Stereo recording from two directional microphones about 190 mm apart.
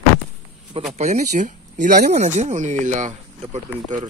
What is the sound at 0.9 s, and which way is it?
Speech, 40° right (ahead or behind).